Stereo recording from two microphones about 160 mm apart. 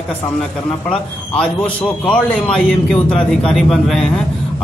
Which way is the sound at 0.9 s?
5° left (ahead or behind).